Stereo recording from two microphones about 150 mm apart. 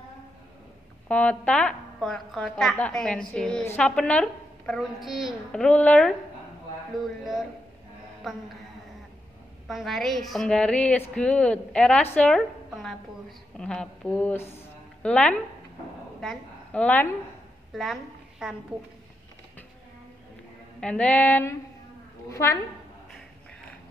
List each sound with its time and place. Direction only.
1.0 s a woman's voice: 10° left (ahead or behind)
8.2 s music: centre (ahead or behind)
9.7 s a woman's voice: centre (ahead or behind)
18.4 s a woman's voice: 5° right (ahead or behind)
20.8 s a sound: 10° left (ahead or behind)
22.3 s a woman's voice: 20° left (ahead or behind)